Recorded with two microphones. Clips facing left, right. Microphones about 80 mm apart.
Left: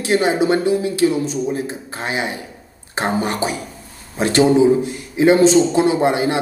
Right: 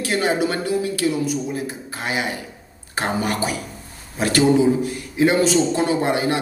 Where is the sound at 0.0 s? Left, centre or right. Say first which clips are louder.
Left 4 dB; left.